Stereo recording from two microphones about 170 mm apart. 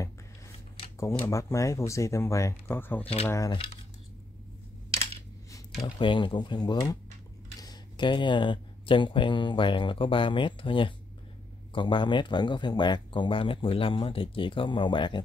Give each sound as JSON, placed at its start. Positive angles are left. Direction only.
{"t": 0.9, "sound": "speech", "side_deg": 15}
{"t": 5.9, "sound": "speech", "side_deg": 30}